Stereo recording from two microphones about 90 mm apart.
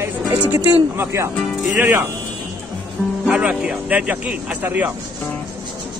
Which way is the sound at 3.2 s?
10° right (ahead or behind).